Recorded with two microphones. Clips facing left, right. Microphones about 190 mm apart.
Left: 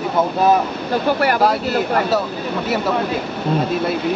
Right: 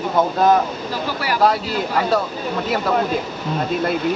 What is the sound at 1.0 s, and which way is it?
Speech, 55° left (ahead or behind).